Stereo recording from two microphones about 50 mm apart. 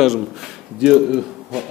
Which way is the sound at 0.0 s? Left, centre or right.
Centre.